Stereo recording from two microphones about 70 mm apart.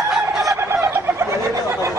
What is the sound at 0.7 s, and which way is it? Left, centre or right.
Chicken, right.